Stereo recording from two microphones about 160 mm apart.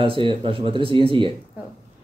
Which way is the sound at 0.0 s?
35° right (ahead or behind).